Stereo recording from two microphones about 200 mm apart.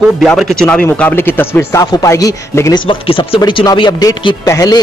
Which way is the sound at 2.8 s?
25° left (ahead or behind).